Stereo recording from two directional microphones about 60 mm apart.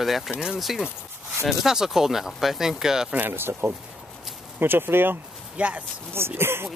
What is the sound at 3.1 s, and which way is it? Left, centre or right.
Speech, right.